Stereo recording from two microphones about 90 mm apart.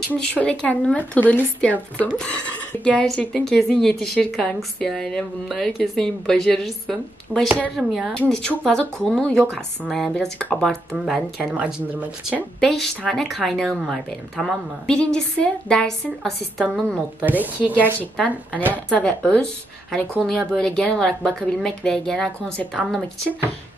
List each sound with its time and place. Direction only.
0.3 s a woman's voice: 15° left (ahead or behind)
11.5 s speech: 15° right (ahead or behind)
12.5 s a woman's voice: 5° left (ahead or behind)
17.2 s speech: 20° right (ahead or behind)
18.7 s a woman's voice: 15° left (ahead or behind)